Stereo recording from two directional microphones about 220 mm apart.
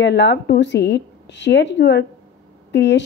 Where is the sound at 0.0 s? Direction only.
50° left (ahead or behind).